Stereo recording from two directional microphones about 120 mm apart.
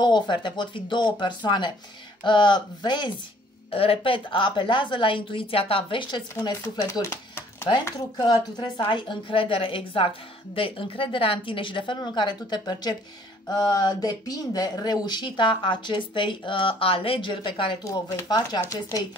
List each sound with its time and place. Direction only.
0.0 s speech: 40° left (ahead or behind)
3.7 s a woman's voice: 50° left (ahead or behind)
6.3 s speech: 25° left (ahead or behind)
7.8 s a woman's voice: 35° left (ahead or behind)
17.8 s speech: 30° left (ahead or behind)